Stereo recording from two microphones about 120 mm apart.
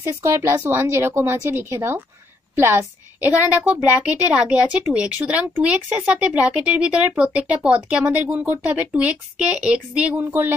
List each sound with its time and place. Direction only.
0.0 s a woman's voice: 20° right (ahead or behind)